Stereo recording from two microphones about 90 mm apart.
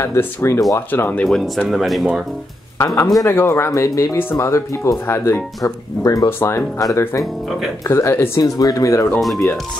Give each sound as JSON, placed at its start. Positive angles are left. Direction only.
{"t": 0.0, "sound": "speech", "side_deg": 30}
{"t": 1.2, "sound": "speech", "side_deg": 5}
{"t": 2.8, "sound": "speech", "side_deg": 35}
{"t": 5.6, "sound": "speech", "side_deg": 40}
{"t": 6.2, "sound": "speech", "side_deg": 30}
{"t": 8.4, "sound": "speech", "side_deg": 45}
{"t": 9.2, "sound": "speech", "side_deg": 0}